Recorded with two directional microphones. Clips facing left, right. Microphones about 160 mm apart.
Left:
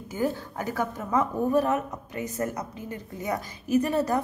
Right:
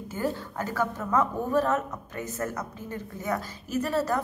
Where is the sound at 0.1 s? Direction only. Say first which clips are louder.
Left 3 dB; 15° left (ahead or behind).